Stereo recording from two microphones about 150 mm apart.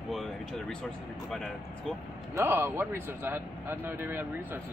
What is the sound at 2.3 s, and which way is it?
A man's voice, 15° right (ahead or behind).